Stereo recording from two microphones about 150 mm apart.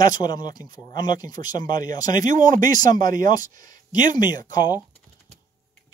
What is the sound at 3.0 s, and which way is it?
Speech, 65° right (ahead or behind).